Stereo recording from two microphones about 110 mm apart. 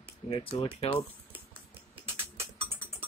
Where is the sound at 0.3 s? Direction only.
55° left (ahead or behind).